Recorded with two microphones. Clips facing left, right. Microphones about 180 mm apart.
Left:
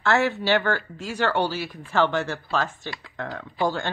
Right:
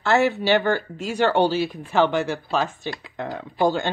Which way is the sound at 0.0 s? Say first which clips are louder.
Right 3 dB; 15° right (ahead or behind).